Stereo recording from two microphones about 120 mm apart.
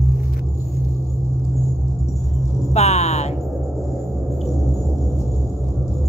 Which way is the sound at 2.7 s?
65° left (ahead or behind).